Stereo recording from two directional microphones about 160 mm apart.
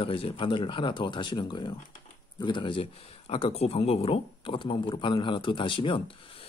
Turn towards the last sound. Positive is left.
turn(degrees=35)  # may be behind; listen again after turning